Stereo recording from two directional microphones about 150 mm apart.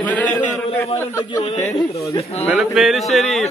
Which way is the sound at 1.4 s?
45° left (ahead or behind).